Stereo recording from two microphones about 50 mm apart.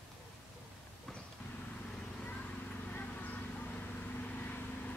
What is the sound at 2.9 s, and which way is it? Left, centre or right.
Vehicle, left.